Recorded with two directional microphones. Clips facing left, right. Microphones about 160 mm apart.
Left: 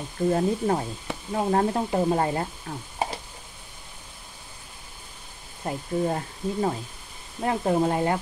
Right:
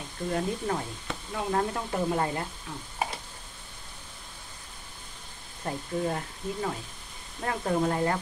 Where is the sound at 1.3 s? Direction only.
35° left (ahead or behind).